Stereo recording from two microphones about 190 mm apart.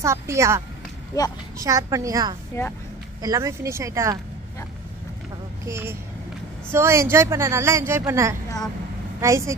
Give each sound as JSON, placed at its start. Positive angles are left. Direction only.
{"t": 0.0, "sound": "speech", "side_deg": -15}
{"t": 2.5, "sound": "speech", "side_deg": 15}
{"t": 3.2, "sound": "speech", "side_deg": -15}
{"t": 5.7, "sound": "speech", "side_deg": -15}